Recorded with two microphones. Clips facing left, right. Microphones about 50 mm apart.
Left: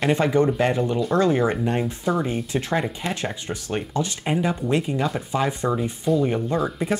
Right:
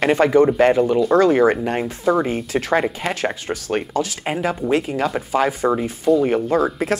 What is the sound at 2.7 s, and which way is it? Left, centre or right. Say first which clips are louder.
Speech: right 7 dB; right.